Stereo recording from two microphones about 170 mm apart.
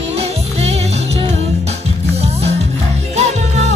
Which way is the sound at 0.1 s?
40° right (ahead or behind).